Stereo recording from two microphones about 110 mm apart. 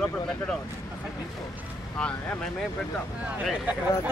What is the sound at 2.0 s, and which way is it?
Speech, 10° left (ahead or behind).